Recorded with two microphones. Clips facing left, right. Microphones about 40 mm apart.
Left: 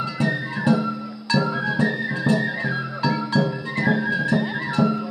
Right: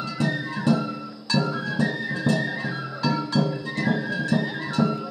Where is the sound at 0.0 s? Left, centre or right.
Centre.